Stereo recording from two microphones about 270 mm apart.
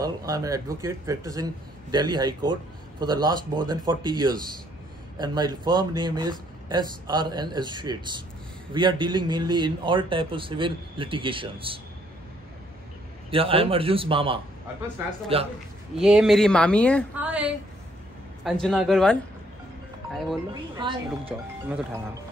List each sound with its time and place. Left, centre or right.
0.0 s a man's voice: centre
13.3 s a man's voice: centre
16.0 s speech: centre
17.2 s speech: centre
20.8 s a man's voice: centre